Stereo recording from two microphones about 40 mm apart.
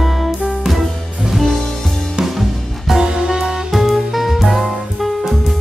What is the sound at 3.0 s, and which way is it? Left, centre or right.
Music, centre.